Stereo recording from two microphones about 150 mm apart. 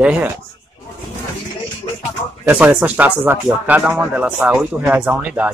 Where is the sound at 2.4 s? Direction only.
15° right (ahead or behind).